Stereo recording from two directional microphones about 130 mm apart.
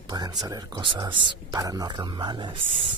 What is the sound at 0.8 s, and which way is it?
Speech, 40° right (ahead or behind).